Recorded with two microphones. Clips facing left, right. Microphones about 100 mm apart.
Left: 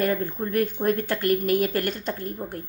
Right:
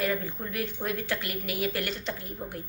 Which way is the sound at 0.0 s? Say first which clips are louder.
Left 5 dB; 45° left (ahead or behind).